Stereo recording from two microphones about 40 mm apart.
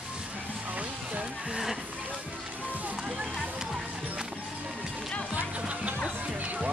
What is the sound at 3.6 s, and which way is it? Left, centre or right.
Music, centre.